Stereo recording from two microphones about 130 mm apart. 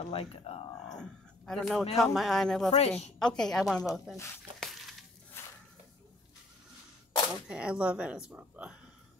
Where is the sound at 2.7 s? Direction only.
55° left (ahead or behind).